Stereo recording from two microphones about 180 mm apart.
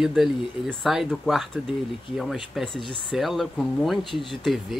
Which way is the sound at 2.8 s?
25° left (ahead or behind).